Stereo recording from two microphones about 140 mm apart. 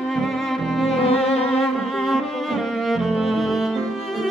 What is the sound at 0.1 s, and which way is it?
Cello, centre (ahead or behind).